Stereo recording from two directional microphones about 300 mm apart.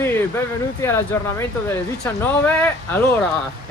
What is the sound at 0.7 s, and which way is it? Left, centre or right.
Speech, centre.